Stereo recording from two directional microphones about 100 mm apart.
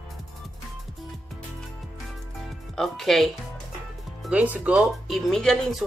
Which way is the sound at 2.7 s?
5° left (ahead or behind).